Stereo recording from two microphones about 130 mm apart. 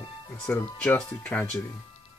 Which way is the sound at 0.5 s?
15° left (ahead or behind).